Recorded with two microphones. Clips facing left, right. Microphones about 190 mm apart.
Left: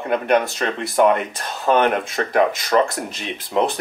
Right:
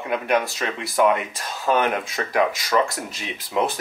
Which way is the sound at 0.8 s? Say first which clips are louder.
Left 3 dB; centre (ahead or behind).